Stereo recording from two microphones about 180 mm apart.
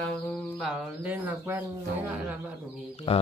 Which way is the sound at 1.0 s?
10° right (ahead or behind).